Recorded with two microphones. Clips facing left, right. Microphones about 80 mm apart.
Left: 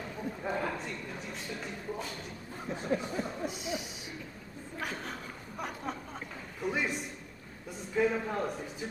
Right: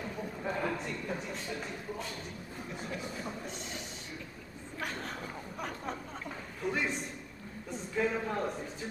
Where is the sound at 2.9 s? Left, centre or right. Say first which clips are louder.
Left 10 dB; left.